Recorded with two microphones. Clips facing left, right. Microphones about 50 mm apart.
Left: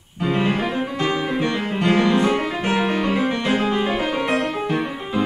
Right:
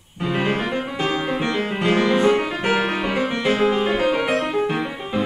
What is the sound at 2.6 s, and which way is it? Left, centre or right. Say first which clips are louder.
Music: right 1 dB; centre.